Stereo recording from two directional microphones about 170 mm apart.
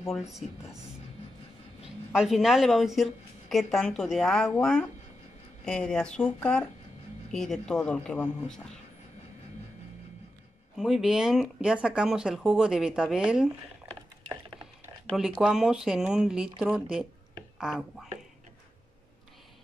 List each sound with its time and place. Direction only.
0.4 s speech: 45° left (ahead or behind)
2.1 s speech: centre (ahead or behind)
10.8 s speech: centre (ahead or behind)
15.0 s speech: centre (ahead or behind)